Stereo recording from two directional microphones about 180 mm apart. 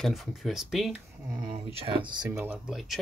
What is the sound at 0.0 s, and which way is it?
Speech, centre (ahead or behind).